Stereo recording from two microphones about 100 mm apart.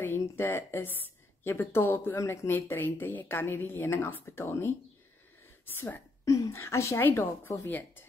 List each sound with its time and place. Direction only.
0.0 s a woman's voice: 20° left (ahead or behind)
5.8 s a woman's voice: 20° left (ahead or behind)